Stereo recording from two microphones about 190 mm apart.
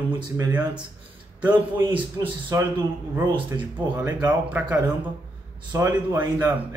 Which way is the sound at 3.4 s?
10° right (ahead or behind).